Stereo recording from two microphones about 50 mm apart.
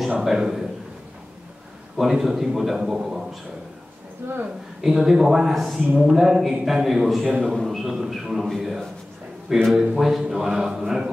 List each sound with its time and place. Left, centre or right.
0.2 s a man's voice: centre
2.0 s a man's voice: centre
4.2 s a woman's voice: right
4.8 s a man's voice: centre